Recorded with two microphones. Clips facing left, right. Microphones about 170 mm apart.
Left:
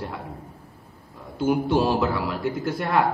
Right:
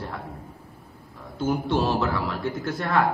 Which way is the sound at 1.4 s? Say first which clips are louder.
Left 3 dB; 10° left (ahead or behind).